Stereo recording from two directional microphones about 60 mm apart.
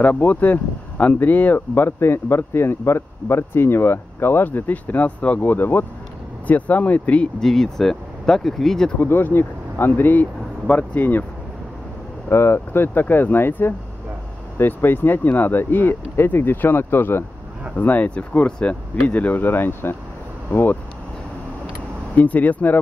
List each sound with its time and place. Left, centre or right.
0.0 s speech: left
6.4 s speech: left
7.3 s speech: centre
9.0 s speech: left
12.3 s speech: left
17.7 s speech: left
22.1 s speech: left